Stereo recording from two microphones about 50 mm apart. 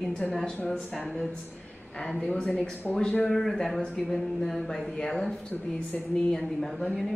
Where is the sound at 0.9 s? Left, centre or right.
Centre.